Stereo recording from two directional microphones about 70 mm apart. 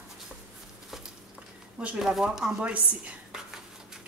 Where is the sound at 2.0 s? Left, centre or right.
Centre.